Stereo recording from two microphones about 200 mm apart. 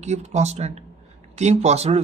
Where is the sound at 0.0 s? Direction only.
35° right (ahead or behind).